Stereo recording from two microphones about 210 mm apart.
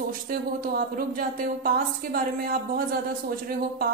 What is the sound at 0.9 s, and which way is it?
Speech, 45° right (ahead or behind).